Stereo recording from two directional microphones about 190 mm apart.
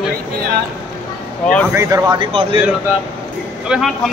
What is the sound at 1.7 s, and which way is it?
Speech, 15° right (ahead or behind).